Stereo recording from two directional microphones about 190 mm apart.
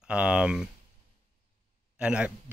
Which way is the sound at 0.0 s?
5° right (ahead or behind).